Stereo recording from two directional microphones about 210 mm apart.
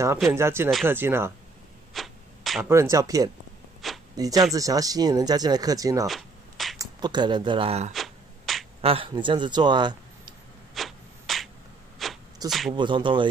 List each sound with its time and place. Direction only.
0.3 s speech: 10° right (ahead or behind)
2.0 s a sound: centre (ahead or behind)
2.7 s speech: 15° right (ahead or behind)
3.8 s a sound: centre (ahead or behind)
4.6 s speech: 15° right (ahead or behind)
6.0 s shuffling cards: centre (ahead or behind)
6.8 s speech: 20° right (ahead or behind)
7.9 s a sound: centre (ahead or behind)
8.8 s speech: 25° right (ahead or behind)
10.7 s a sound: centre (ahead or behind)
12.4 s speech: centre (ahead or behind)
12.7 s speech: 20° right (ahead or behind)